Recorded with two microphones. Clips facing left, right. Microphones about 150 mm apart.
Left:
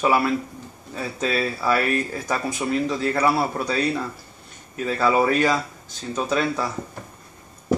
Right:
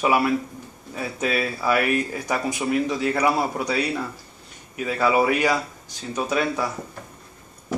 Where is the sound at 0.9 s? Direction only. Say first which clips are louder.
Even; 15° right (ahead or behind).